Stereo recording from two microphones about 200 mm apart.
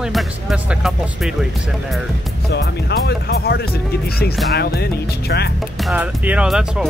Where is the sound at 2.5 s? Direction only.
55° left (ahead or behind).